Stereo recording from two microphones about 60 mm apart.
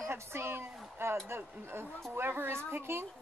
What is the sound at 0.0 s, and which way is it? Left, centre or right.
A woman's voice, right.